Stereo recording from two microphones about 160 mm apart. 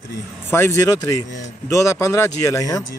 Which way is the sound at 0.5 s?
15° left (ahead or behind).